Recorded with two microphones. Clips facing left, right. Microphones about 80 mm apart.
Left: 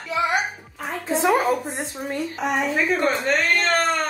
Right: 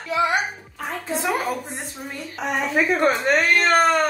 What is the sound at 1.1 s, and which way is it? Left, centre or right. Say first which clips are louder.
Speech: left 5 dB; centre.